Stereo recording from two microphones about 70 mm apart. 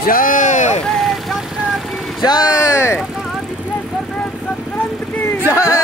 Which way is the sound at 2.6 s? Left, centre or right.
Left.